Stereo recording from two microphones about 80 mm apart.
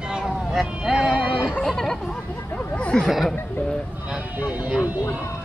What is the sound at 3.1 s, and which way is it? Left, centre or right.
Speech, centre.